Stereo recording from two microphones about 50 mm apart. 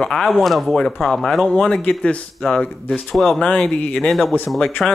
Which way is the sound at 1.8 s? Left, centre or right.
Left.